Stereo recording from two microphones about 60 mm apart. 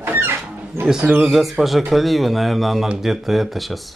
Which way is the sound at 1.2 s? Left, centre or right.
Centre.